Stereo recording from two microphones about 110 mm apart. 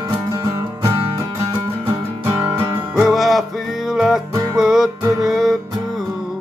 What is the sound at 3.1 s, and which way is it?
Music, centre (ahead or behind).